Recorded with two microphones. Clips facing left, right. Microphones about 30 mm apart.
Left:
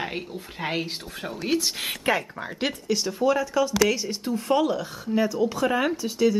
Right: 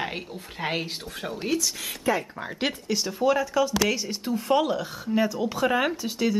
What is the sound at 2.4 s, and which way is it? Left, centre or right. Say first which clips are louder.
Speech: left 1 dB; centre.